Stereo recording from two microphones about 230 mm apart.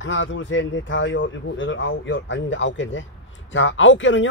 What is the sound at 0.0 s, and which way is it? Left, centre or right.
A man's voice, left.